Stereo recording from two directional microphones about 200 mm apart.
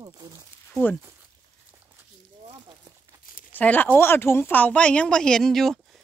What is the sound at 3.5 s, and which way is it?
Speech, 10° left (ahead or behind).